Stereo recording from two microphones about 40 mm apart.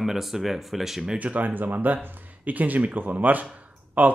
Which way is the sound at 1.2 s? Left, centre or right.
Right.